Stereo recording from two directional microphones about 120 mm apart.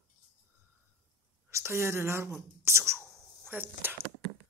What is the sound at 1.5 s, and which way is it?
Speech, 20° right (ahead or behind).